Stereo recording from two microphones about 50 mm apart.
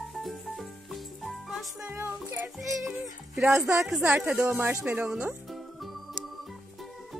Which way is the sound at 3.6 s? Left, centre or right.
Right.